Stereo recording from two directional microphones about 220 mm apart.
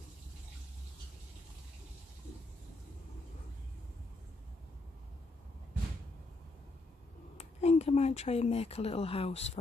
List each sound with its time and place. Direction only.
7.3 s speech: 30° left (ahead or behind)